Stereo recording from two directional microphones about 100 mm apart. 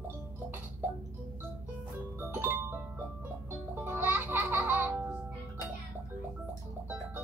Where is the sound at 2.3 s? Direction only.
20° right (ahead or behind).